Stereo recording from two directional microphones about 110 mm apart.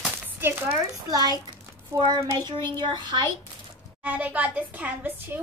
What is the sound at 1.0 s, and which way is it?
Speech, 40° right (ahead or behind).